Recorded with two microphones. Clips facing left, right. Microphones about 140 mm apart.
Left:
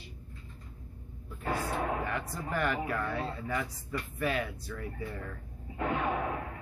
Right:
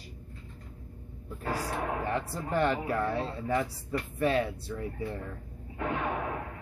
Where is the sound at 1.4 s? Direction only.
35° right (ahead or behind).